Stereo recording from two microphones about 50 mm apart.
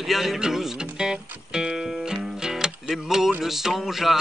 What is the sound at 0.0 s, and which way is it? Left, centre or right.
Music, centre.